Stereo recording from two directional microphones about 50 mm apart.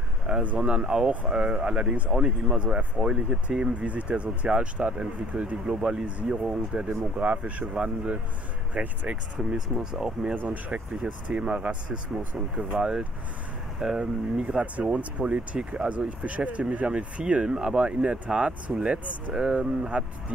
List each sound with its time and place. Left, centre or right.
0.3 s a sound: right
0.6 s speech: right
5.7 s speech: centre
10.3 s speech: right
12.2 s speech: right
12.7 s speech: centre